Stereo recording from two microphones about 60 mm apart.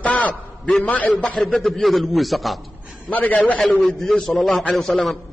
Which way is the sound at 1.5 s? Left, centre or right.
Centre.